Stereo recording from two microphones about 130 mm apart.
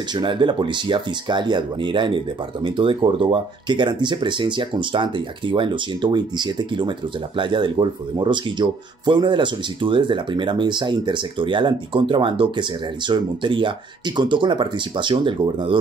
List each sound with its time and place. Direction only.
0.1 s speech: 40° right (ahead or behind)